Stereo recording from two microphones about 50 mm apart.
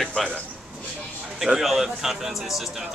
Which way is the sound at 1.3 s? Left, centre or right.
Centre.